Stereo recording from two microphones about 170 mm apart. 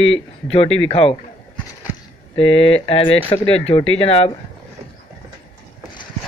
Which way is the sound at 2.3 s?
30° left (ahead or behind).